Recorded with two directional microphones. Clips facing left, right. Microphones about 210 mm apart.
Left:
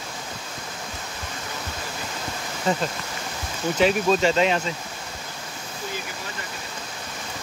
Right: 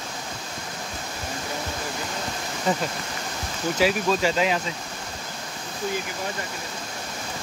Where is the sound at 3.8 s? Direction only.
5° right (ahead or behind).